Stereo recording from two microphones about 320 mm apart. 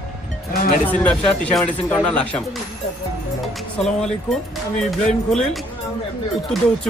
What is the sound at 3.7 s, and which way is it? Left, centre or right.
Speech, centre.